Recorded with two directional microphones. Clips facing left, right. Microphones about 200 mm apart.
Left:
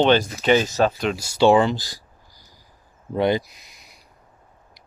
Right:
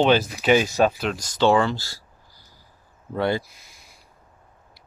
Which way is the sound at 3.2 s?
15° left (ahead or behind).